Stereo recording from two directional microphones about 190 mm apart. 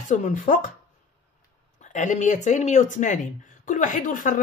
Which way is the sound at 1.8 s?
40° left (ahead or behind).